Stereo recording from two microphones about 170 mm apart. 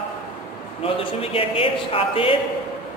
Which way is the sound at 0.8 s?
35° left (ahead or behind).